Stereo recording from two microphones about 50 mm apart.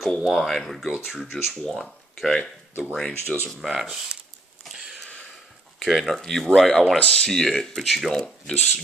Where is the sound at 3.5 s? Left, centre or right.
Centre.